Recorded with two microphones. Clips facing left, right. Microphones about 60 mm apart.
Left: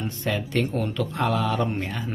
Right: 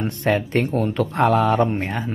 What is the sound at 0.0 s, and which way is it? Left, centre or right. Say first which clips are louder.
Speech: right 7 dB; right.